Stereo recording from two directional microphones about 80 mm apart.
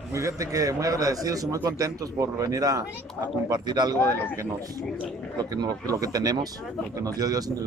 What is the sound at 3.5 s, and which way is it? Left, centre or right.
Speech, right.